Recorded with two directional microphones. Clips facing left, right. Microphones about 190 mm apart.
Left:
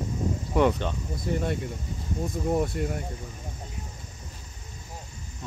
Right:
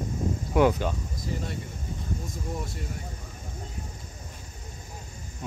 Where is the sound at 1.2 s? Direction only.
60° left (ahead or behind).